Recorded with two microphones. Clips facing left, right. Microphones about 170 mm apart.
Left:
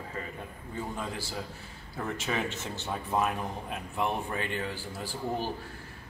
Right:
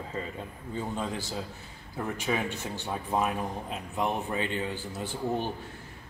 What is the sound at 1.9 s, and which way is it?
A man's voice, 15° right (ahead or behind).